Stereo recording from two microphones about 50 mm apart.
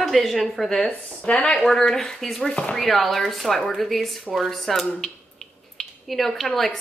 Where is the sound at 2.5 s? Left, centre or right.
Centre.